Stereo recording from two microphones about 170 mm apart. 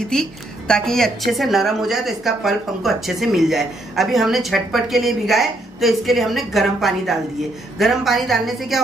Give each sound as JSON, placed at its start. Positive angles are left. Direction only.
{"t": 0.1, "sound": "a woman's voice", "side_deg": 5}